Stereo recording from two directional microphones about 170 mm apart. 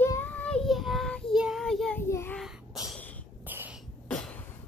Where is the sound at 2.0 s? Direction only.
15° left (ahead or behind).